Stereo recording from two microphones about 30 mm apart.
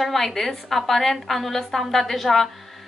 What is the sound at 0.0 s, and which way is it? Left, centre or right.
A woman's voice, centre.